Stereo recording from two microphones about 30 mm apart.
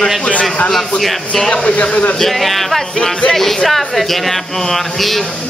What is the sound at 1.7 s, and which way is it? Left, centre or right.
Speech, left.